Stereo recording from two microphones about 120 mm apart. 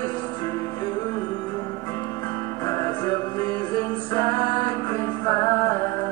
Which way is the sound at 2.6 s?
30° left (ahead or behind).